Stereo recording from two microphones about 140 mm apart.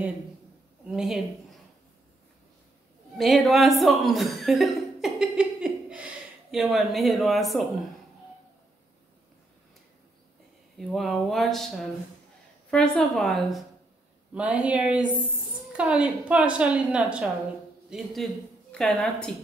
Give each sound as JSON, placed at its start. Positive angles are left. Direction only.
{"t": 0.8, "sound": "speech", "side_deg": -5}
{"t": 3.2, "sound": "chuckle", "side_deg": 0}
{"t": 6.5, "sound": "speech", "side_deg": 0}
{"t": 10.9, "sound": "speech", "side_deg": 0}
{"t": 14.3, "sound": "a woman's voice", "side_deg": -10}